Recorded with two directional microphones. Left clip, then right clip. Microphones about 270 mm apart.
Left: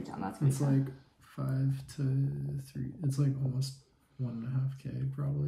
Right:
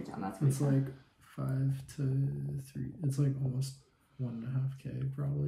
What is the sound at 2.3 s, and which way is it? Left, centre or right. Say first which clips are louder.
Speech: left 1 dB; centre.